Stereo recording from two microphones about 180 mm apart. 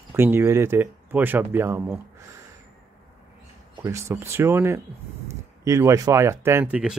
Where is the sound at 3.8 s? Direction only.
15° right (ahead or behind).